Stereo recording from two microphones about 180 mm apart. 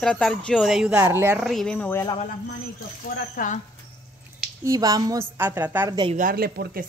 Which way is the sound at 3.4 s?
50° left (ahead or behind).